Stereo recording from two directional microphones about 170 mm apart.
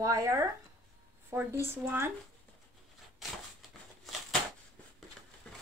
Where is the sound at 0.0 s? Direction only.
20° right (ahead or behind).